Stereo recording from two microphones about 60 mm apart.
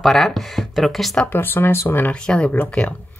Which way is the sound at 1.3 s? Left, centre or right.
Left.